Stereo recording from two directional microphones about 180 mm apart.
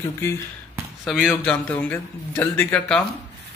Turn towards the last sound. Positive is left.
turn(degrees=5)  # may be behind; listen again after turning